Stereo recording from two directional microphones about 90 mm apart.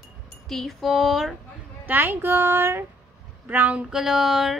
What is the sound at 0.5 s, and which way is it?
Speech, centre (ahead or behind).